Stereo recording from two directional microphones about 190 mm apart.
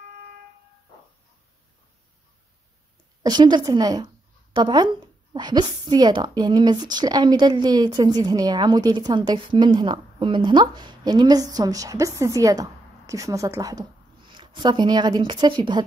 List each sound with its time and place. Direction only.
3.2 s speech: 20° right (ahead or behind)